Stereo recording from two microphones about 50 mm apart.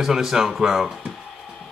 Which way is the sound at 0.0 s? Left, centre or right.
Centre.